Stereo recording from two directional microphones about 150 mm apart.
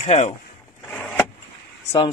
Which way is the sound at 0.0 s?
50° left (ahead or behind).